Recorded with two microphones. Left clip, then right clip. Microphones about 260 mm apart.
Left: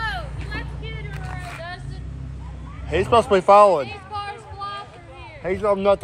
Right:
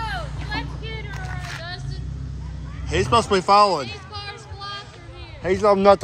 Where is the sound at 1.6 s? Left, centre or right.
Left.